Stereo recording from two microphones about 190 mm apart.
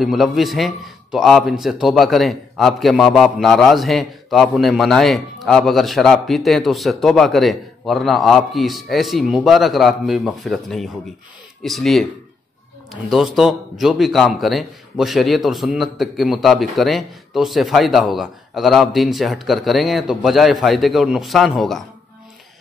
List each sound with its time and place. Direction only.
0.0 s a man's voice: centre (ahead or behind)